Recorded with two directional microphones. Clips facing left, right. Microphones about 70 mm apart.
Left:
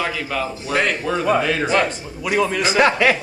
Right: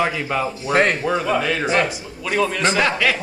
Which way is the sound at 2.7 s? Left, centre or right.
Left.